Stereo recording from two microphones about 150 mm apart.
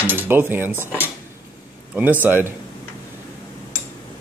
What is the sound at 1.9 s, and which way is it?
Speech, 10° right (ahead or behind).